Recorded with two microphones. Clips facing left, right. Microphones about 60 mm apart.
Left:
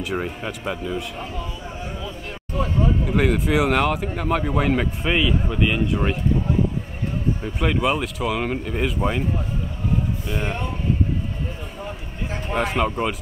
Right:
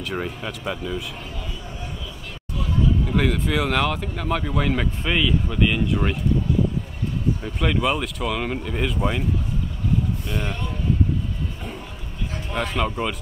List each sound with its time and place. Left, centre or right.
0.0 s speech: centre
2.5 s vehicle: left
3.1 s speech: centre
7.4 s speech: centre
10.3 s speech: left
12.5 s speech: centre